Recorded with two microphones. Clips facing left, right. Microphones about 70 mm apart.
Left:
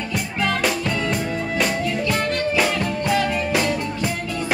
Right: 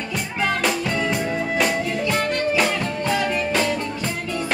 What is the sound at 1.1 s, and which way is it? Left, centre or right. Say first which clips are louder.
Music: right 1 dB; centre.